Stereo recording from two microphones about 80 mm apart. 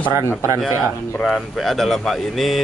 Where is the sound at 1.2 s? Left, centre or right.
Centre.